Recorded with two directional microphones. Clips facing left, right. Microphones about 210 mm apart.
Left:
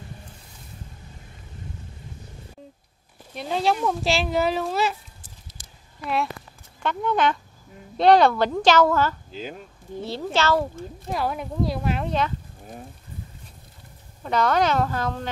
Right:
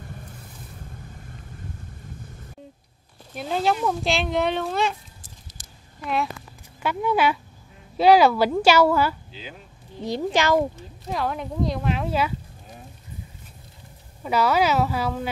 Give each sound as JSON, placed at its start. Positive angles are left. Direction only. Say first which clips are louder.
{"t": 3.3, "sound": "speech", "louder": "even", "side_deg": 0}
{"t": 6.8, "sound": "a woman's voice", "louder": "right 1 dB", "side_deg": -5}
{"t": 9.3, "sound": "speech", "louder": "left 6 dB", "side_deg": 45}
{"t": 10.0, "sound": "a woman's voice", "louder": "right 2 dB", "side_deg": -15}
{"t": 11.1, "sound": "speech", "louder": "even", "side_deg": 5}
{"t": 14.2, "sound": "a woman's voice", "louder": "right 1 dB", "side_deg": -5}